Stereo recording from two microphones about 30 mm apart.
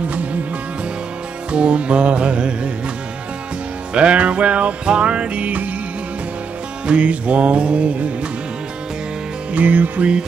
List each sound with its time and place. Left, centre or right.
1.5 s music: right
3.9 s music: right
6.9 s music: right
9.5 s music: right